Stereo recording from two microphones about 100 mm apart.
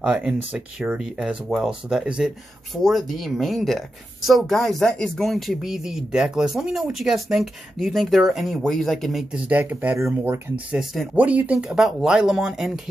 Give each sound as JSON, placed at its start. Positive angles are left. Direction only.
{"t": 0.0, "sound": "speech", "side_deg": -10}
{"t": 9.3, "sound": "speech", "side_deg": -15}
{"t": 10.7, "sound": "speech", "side_deg": -5}
{"t": 11.1, "sound": "speech", "side_deg": -15}